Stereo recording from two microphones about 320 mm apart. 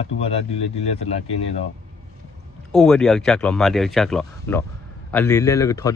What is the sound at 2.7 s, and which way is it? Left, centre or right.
A man's voice, centre.